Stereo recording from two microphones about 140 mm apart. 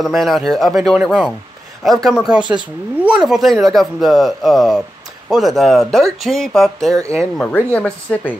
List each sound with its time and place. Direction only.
0.0 s speech: centre (ahead or behind)
7.0 s speech: 20° right (ahead or behind)
7.3 s speech: 10° left (ahead or behind)